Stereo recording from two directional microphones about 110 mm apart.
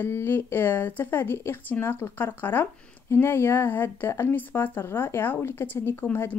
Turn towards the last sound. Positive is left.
turn(degrees=15)  # may be behind; listen again after turning